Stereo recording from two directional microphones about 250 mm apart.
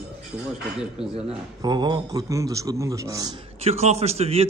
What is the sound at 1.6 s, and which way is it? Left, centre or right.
A man's voice, centre.